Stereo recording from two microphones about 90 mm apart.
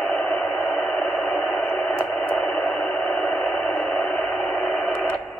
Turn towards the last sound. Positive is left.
turn(degrees=0)  # may be behind; listen again after turning